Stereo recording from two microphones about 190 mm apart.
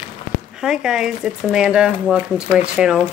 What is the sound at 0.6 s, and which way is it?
Speech, 5° right (ahead or behind).